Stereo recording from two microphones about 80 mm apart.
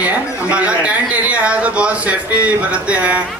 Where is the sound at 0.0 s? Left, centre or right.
Centre.